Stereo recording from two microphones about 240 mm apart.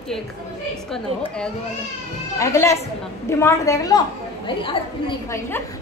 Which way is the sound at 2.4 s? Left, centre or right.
Centre.